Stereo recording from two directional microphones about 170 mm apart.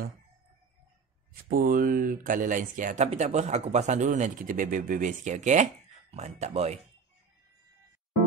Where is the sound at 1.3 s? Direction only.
55° right (ahead or behind); by 6.8 s 40° right (ahead or behind).